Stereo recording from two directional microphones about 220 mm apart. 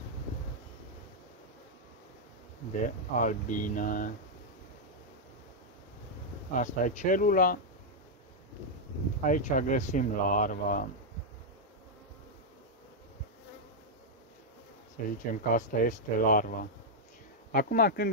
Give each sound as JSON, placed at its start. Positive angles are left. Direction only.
{"t": 3.1, "sound": "speech", "side_deg": 35}
{"t": 6.5, "sound": "speech", "side_deg": 35}
{"t": 9.2, "sound": "speech", "side_deg": 35}
{"t": 15.0, "sound": "speech", "side_deg": 40}